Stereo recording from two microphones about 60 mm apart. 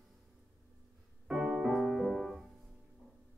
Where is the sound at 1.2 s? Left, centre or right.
Centre.